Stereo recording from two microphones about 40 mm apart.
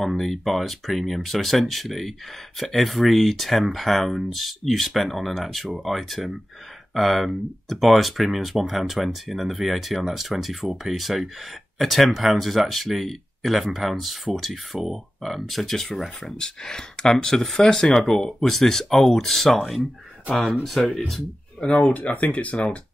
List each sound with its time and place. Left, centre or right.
0.0 s speech: centre
16.3 s speech: centre
20.8 s speech: centre
21.5 s speech: left
21.8 s speech: left